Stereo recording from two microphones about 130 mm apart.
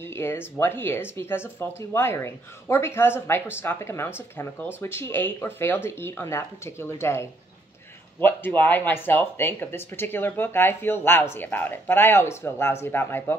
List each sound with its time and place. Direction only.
0.0 s speech: 20° left (ahead or behind)